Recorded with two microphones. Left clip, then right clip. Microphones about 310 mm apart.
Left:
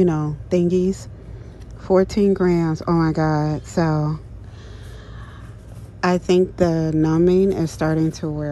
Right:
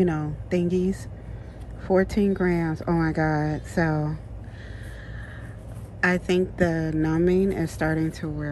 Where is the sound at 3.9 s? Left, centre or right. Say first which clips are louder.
Left 4 dB; right.